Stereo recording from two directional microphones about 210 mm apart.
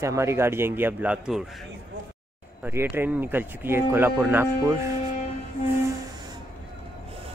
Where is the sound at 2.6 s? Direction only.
10° right (ahead or behind).